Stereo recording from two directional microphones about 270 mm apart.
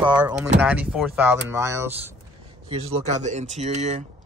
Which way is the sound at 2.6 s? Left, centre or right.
Right.